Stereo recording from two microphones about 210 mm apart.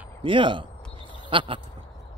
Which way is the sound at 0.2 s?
25° right (ahead or behind).